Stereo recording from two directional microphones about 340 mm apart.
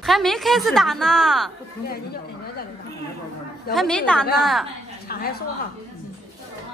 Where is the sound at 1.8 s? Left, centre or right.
Left.